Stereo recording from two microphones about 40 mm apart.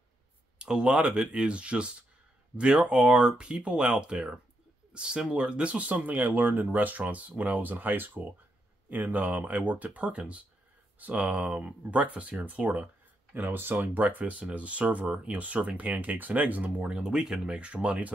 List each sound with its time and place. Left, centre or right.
0.6 s a sound: right
0.8 s speech: right
5.9 s speech: right
7.6 s speech: right
8.8 s speech: right
9.9 s speech: right
13.3 s speech: right
14.0 s speech: right
16.9 s speech: right